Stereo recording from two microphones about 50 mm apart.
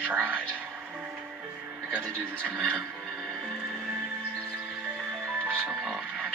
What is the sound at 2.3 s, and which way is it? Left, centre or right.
Speech, right.